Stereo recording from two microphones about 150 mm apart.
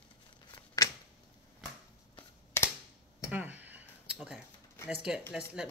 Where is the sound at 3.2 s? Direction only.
10° right (ahead or behind).